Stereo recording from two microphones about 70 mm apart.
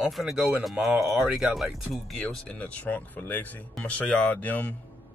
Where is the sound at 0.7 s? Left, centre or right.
Centre.